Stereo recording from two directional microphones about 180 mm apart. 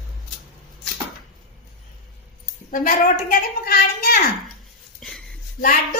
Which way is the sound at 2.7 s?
50° left (ahead or behind).